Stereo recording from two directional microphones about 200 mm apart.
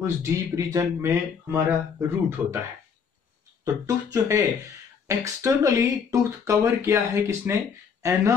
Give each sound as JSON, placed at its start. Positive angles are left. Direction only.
{"t": 0.0, "sound": "speech", "side_deg": -15}
{"t": 3.6, "sound": "speech", "side_deg": -15}